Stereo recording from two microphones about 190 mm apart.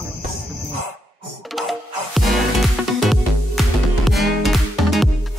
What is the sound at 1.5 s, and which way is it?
Music, centre (ahead or behind).